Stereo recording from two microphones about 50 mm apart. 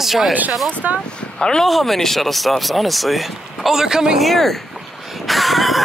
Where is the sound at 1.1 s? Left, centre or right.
Centre.